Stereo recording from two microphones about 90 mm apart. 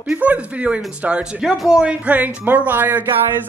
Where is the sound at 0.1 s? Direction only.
15° right (ahead or behind).